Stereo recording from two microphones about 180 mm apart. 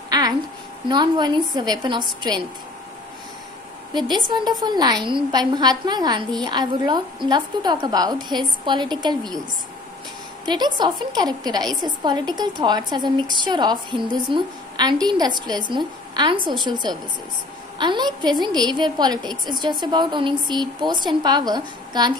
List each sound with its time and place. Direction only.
0.1 s a sound: 20° right (ahead or behind)
0.8 s a woman's voice: 25° right (ahead or behind)
3.9 s a woman's voice: 25° right (ahead or behind)
10.4 s a woman's voice: 25° right (ahead or behind)